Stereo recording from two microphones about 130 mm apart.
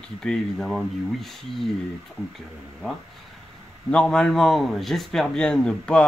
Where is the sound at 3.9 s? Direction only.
5° left (ahead or behind).